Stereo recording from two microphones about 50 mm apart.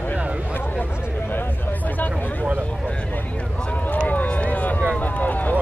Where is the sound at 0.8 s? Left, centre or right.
Left.